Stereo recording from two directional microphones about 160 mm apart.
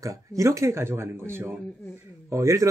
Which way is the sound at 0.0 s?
20° right (ahead or behind).